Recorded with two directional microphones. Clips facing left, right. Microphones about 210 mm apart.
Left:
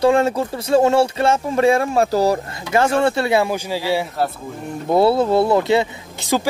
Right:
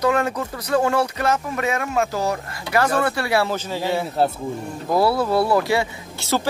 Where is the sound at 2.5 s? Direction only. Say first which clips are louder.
Left 3 dB; 25° left (ahead or behind).